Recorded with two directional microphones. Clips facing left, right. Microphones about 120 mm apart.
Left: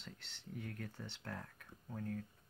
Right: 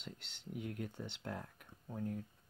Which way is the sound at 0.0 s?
15° right (ahead or behind).